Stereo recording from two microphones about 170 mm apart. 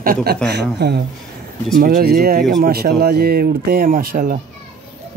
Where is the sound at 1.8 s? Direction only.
65° right (ahead or behind).